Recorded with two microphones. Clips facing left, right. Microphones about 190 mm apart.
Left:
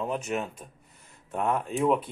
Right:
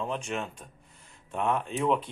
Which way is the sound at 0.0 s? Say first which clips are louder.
Left 3 dB; 5° left (ahead or behind).